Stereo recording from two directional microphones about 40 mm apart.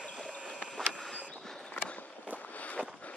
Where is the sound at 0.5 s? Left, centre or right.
Left.